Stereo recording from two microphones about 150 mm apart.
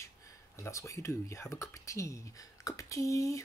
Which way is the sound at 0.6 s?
20° left (ahead or behind).